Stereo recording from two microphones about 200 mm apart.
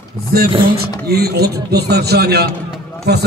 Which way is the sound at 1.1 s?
50° right (ahead or behind).